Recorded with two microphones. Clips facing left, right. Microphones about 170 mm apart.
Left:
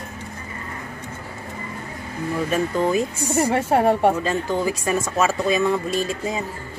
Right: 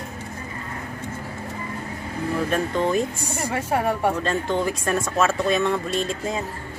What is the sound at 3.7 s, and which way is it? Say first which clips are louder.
Speech: left 5 dB; 30° left (ahead or behind).